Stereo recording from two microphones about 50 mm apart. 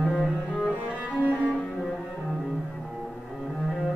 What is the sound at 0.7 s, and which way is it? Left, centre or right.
Cello, right.